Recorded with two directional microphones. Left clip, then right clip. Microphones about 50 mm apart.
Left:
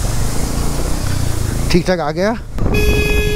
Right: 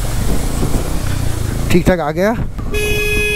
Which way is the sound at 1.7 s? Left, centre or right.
Centre.